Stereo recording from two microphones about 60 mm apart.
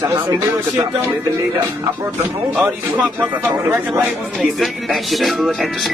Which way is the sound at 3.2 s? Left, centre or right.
Right.